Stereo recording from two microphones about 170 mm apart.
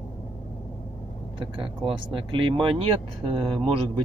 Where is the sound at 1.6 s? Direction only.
30° right (ahead or behind).